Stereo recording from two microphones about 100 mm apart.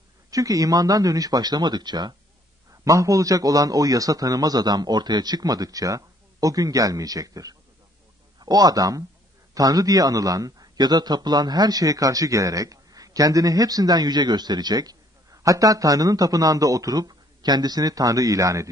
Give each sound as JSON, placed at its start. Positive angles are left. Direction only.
{"t": 0.3, "sound": "a man's voice", "side_deg": -35}
{"t": 2.7, "sound": "a man's voice", "side_deg": -35}